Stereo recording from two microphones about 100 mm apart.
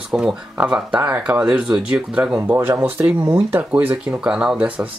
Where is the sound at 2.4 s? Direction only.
25° right (ahead or behind).